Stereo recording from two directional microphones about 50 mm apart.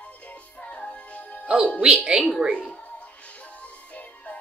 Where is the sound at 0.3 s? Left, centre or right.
Left.